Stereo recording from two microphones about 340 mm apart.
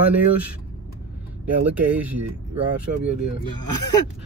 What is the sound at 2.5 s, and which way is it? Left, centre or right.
Speech, right.